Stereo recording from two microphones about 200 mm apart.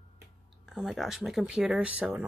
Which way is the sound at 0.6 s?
Centre (ahead or behind).